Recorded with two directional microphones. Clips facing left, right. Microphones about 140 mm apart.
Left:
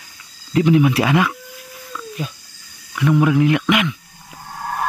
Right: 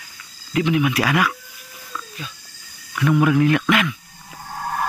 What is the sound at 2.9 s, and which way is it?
Speech, 20° left (ahead or behind).